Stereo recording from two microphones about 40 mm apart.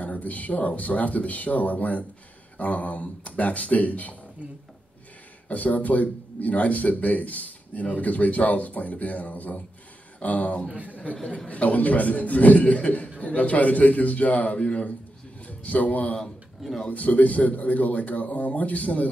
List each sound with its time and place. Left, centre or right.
0.0 s speech: left
5.5 s a man's voice: left